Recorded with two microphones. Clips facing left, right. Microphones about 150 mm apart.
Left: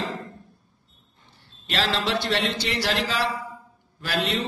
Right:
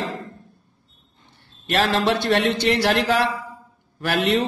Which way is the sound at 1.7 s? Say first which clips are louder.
Right 6 dB; 50° right (ahead or behind).